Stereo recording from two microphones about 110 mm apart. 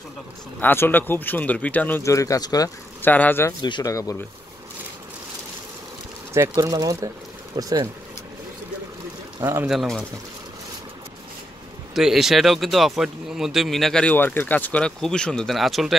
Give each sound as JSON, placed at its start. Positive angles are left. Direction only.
{"t": 0.6, "sound": "speech", "side_deg": 20}
{"t": 2.0, "sound": "speech", "side_deg": 30}
{"t": 3.0, "sound": "speech", "side_deg": 15}
{"t": 3.6, "sound": "speech", "side_deg": 45}
{"t": 3.9, "sound": "speech", "side_deg": 30}
{"t": 6.5, "sound": "speech", "side_deg": -35}
{"t": 9.4, "sound": "speech", "side_deg": -25}
{"t": 9.7, "sound": "speech", "side_deg": 0}
{"t": 11.9, "sound": "speech", "side_deg": -5}
{"t": 14.1, "sound": "speech", "side_deg": 20}